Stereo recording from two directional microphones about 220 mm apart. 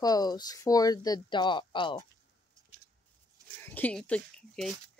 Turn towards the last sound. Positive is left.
turn(degrees=5)  # may be behind; listen again after turning